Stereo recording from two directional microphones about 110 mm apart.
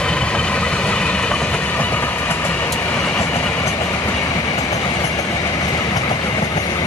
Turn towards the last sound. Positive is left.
turn(degrees=35)  # may be behind; listen again after turning